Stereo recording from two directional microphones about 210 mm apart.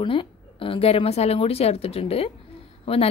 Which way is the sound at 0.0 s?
25° left (ahead or behind).